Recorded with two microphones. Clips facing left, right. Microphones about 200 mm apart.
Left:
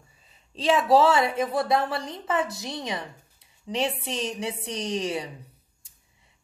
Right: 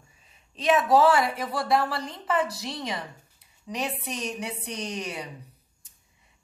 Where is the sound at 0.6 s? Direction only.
30° left (ahead or behind).